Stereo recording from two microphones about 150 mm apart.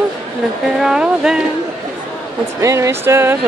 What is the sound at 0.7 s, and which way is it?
Speech, 5° right (ahead or behind).